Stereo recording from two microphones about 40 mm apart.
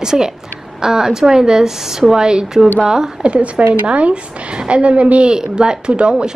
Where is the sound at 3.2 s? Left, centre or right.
Right.